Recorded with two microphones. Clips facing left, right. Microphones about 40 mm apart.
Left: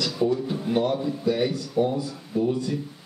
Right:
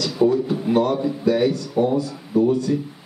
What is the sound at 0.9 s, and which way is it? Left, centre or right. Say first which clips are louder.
Speech: right 5 dB; centre.